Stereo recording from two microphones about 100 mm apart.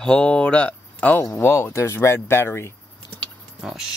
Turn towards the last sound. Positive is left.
turn(degrees=-5)  # may be behind; listen again after turning